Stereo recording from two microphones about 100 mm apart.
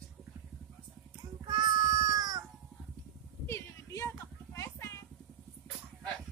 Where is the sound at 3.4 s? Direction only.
25° left (ahead or behind).